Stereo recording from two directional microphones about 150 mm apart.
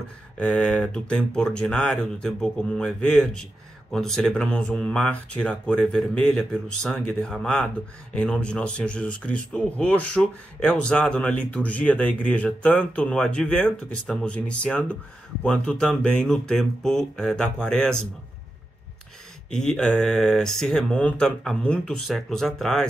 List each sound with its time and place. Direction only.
0.4 s speech: 5° left (ahead or behind)
19.5 s speech: 5° left (ahead or behind)